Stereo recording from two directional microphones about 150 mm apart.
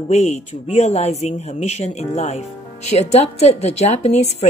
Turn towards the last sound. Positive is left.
turn(degrees=45)  # may be behind; listen again after turning